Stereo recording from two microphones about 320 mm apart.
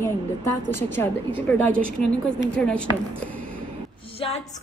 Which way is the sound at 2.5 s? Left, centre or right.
Centre.